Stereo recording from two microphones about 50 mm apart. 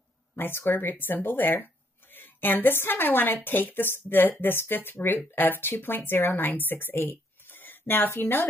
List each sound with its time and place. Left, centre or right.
0.4 s speech: left